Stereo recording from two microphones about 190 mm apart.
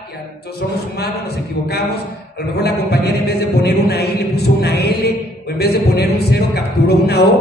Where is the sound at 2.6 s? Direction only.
60° left (ahead or behind).